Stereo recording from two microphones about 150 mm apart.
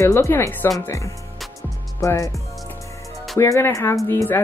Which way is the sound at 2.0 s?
20° left (ahead or behind).